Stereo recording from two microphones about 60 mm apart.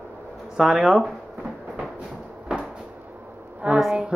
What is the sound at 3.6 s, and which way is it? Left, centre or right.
Speech, right.